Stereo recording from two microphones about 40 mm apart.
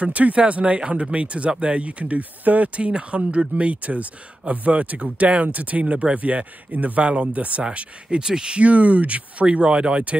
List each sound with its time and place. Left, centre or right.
0.0 s speech: right
7.0 s speech: right